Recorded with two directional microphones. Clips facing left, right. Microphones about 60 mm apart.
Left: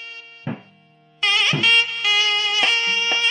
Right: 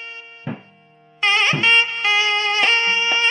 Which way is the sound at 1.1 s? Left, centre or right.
Right.